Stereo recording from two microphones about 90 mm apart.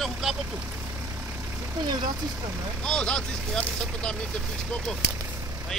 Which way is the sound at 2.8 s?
10° left (ahead or behind).